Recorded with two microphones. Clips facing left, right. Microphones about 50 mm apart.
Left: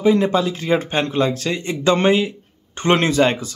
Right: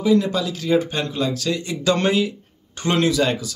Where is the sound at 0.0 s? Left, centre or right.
Left.